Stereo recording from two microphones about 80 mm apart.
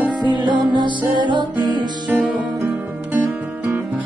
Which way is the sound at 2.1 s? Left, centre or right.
Centre.